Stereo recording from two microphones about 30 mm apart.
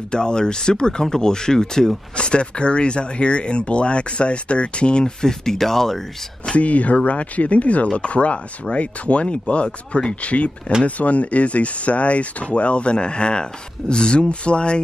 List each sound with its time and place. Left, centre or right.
0.1 s speech: left
2.1 s speech: left
5.0 s speech: centre
6.5 s speech: left